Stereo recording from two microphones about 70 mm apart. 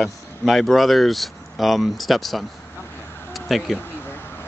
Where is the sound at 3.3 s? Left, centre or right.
Centre.